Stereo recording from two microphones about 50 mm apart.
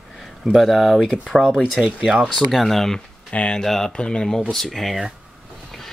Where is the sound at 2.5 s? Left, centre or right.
Centre.